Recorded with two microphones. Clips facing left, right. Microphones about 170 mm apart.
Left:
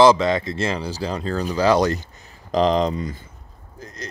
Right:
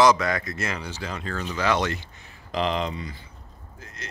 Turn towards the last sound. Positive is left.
turn(degrees=45)  # may be behind; listen again after turning